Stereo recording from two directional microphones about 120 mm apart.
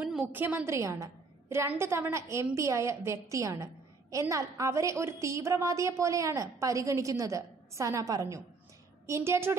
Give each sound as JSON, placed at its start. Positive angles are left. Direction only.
{"t": 0.0, "sound": "a woman's voice", "side_deg": -15}